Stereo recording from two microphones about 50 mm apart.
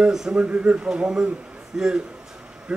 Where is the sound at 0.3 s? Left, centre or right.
Right.